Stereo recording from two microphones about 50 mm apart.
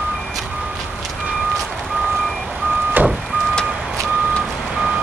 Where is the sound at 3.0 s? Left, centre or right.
Right.